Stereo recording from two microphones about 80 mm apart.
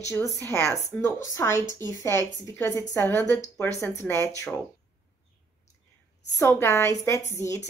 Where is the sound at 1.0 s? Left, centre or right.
Left.